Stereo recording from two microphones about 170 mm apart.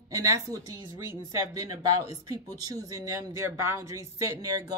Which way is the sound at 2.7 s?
20° right (ahead or behind).